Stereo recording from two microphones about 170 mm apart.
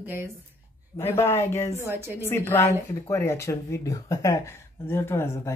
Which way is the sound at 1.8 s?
15° right (ahead or behind).